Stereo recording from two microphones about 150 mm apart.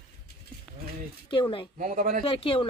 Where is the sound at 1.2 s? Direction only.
35° left (ahead or behind).